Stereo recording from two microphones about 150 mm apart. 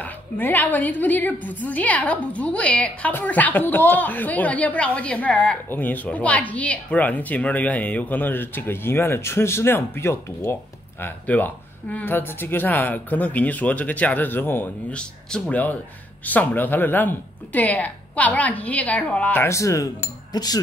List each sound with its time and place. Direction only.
0.0 s a woman's voice: 10° left (ahead or behind)